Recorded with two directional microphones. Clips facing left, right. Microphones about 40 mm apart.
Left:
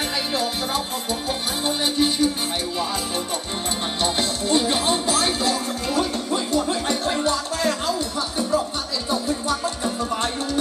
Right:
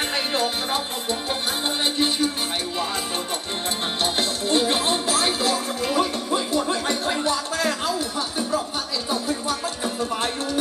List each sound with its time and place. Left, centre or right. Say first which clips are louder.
0.1 s music: right 1 dB; right
1.8 s music: left 2 dB; centre
4.0 s music: left 1 dB; centre